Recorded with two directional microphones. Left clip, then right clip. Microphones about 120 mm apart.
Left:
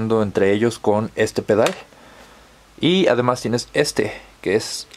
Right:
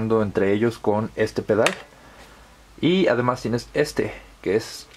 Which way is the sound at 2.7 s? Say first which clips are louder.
Left 3 dB; 25° left (ahead or behind).